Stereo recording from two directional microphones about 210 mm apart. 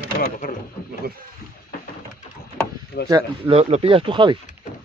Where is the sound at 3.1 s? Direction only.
25° right (ahead or behind).